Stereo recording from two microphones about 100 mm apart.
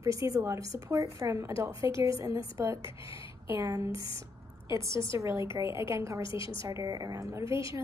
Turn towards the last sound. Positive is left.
turn(degrees=-30)  # may be behind; listen again after turning